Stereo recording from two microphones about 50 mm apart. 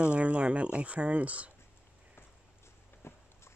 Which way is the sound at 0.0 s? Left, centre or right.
Right.